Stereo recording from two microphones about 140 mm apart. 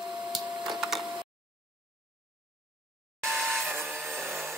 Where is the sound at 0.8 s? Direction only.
5° right (ahead or behind).